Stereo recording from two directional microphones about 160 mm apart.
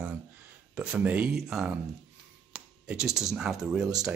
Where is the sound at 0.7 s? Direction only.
10° right (ahead or behind).